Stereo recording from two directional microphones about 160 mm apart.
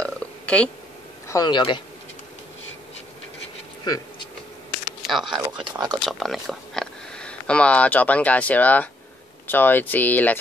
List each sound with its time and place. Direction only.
0.0 s burping: 5° left (ahead or behind)
1.3 s speech: 25° left (ahead or behind)
3.8 s a sound: 25° left (ahead or behind)
5.0 s a sound: centre (ahead or behind)
5.3 s speech: 30° right (ahead or behind)
6.0 s speech: centre (ahead or behind)